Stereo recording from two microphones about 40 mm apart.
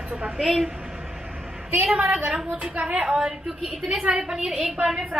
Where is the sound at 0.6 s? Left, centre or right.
Centre.